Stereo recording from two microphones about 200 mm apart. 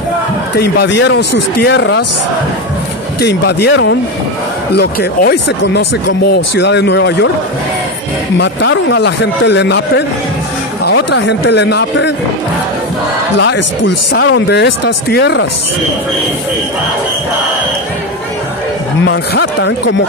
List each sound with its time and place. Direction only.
0.6 s speech: 55° left (ahead or behind)
3.2 s speech: 55° left (ahead or behind)
8.4 s speech: 65° left (ahead or behind)
13.4 s speech: 60° left (ahead or behind)
19.0 s speech: 60° left (ahead or behind)